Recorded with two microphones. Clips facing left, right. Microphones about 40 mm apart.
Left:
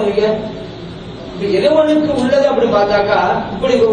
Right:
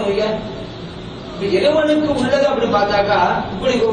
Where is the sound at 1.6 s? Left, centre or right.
Right.